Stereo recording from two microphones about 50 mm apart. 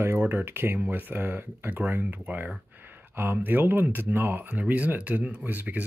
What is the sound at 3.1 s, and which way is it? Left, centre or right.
Speech, right.